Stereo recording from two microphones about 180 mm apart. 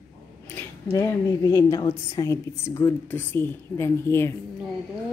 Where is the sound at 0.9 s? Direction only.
20° left (ahead or behind).